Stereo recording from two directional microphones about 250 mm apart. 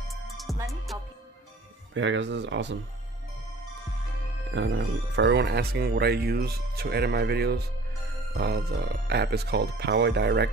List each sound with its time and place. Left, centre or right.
0.1 s music: centre
0.9 s music: centre
2.0 s speech: right
4.5 s speech: right